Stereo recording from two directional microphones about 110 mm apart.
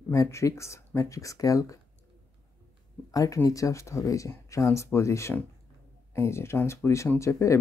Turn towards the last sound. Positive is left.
turn(degrees=25)  # may be behind; listen again after turning